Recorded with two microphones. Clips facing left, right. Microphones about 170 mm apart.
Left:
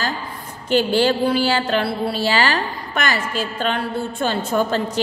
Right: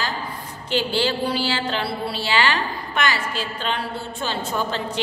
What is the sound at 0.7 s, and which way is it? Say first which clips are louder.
A woman's voice: left 6 dB; 50° left (ahead or behind).